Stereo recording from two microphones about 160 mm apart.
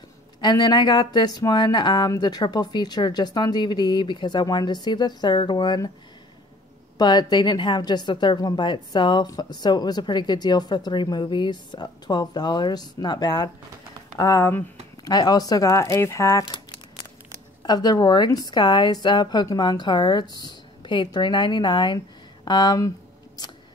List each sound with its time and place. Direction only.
0.4 s a woman's voice: 25° left (ahead or behind)
7.0 s a woman's voice: 25° left (ahead or behind)